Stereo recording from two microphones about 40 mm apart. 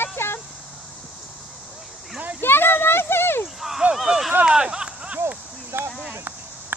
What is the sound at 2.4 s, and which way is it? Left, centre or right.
A child's voice, left.